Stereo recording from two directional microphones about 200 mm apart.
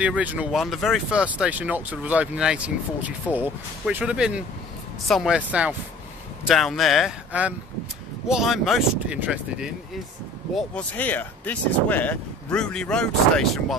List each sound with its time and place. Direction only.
0.0 s speech: 5° right (ahead or behind)
10.5 s speech: 5° left (ahead or behind)